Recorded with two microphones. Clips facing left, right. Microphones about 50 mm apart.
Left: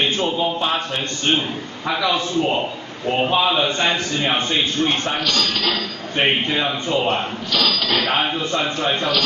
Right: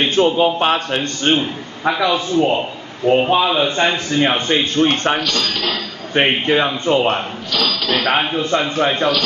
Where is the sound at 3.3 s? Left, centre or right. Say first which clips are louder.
Right 3 dB; centre.